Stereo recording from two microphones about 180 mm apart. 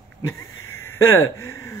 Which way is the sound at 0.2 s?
15° left (ahead or behind).